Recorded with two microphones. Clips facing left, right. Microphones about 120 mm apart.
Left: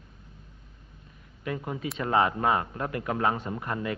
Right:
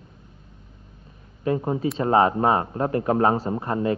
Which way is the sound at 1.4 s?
30° right (ahead or behind).